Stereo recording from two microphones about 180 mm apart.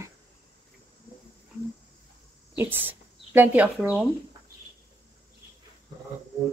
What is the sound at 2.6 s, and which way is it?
Speech, 10° right (ahead or behind).